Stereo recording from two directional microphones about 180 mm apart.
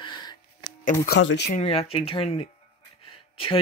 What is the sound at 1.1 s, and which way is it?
Speech, 80° left.